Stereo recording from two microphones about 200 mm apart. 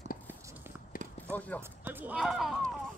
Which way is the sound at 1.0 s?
45° left (ahead or behind).